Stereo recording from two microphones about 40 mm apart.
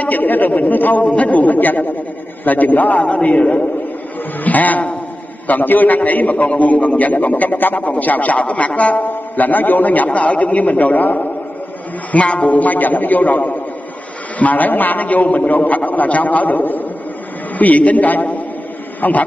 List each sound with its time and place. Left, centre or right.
0.0 s a man's voice: left
1.0 s a man's voice: left
3.0 s a man's voice: left
9.0 s a man's voice: left
12.1 s a man's voice: left